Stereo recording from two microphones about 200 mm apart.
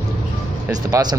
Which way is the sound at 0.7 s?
15° right (ahead or behind).